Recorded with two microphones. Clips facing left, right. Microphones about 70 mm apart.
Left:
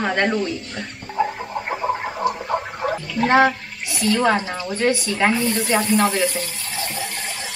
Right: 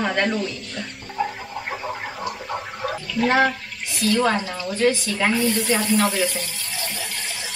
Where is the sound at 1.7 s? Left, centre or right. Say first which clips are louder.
Left 7 dB; centre.